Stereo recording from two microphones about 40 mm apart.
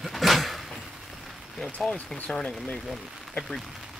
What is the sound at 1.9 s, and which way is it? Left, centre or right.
Speech, left.